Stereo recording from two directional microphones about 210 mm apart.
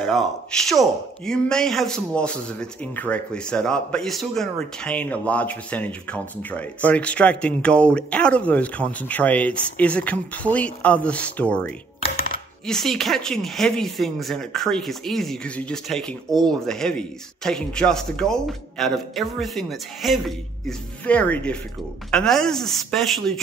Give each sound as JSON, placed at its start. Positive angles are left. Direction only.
{"t": 0.0, "sound": "speech", "side_deg": 0}
{"t": 12.0, "sound": "coin", "side_deg": 25}
{"t": 12.6, "sound": "speech", "side_deg": 0}